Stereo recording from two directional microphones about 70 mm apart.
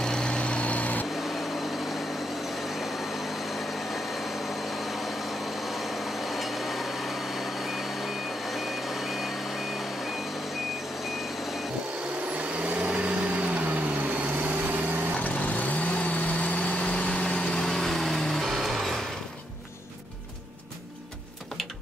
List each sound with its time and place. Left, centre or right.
0.0 s vehicle: centre
3.4 s vehicle: centre
12.5 s vehicle: centre
15.1 s vehicle: left; by 18.9 s centre